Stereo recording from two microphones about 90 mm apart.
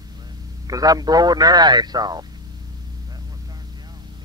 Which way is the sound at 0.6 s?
45° right (ahead or behind).